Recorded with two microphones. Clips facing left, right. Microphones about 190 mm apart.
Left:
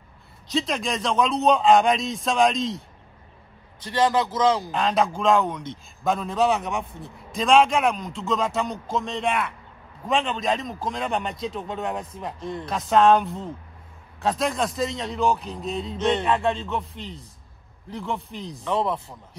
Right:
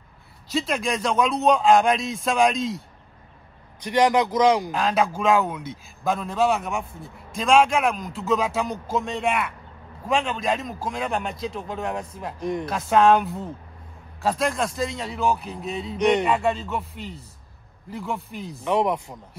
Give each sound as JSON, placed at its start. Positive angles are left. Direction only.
{"t": 0.5, "sound": "a man's voice", "side_deg": 0}
{"t": 3.8, "sound": "a man's voice", "side_deg": -15}
{"t": 4.6, "sound": "a man's voice", "side_deg": 0}
{"t": 12.4, "sound": "a man's voice", "side_deg": -15}
{"t": 12.6, "sound": "a man's voice", "side_deg": 0}
{"t": 16.0, "sound": "a man's voice", "side_deg": -15}
{"t": 16.3, "sound": "a man's voice", "side_deg": -5}
{"t": 18.6, "sound": "a man's voice", "side_deg": -15}